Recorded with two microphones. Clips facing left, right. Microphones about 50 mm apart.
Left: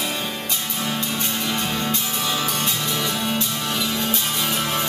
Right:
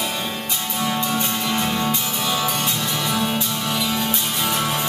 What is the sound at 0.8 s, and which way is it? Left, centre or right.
Music, centre.